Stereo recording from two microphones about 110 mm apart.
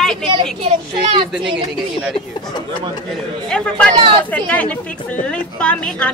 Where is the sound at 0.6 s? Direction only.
60° right (ahead or behind).